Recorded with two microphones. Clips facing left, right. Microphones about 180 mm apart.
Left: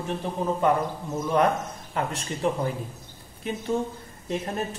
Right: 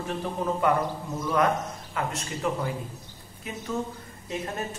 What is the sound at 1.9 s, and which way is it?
Speech, 35° left (ahead or behind).